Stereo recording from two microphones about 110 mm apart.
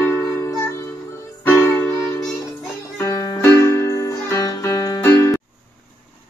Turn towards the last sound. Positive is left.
turn(degrees=30)  # may be behind; listen again after turning